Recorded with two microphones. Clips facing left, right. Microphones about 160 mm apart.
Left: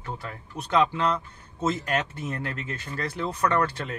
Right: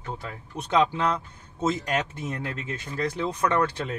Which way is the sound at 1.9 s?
20° right (ahead or behind).